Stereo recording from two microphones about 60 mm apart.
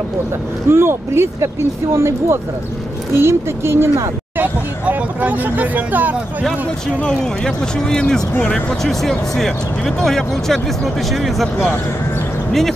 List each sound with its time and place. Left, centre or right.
0.7 s speech: right
4.4 s speech: right
7.0 s speech: centre